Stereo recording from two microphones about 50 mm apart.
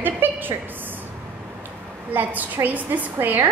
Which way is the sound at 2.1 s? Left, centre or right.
Right.